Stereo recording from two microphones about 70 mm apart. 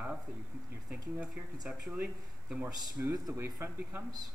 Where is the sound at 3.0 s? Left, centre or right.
Right.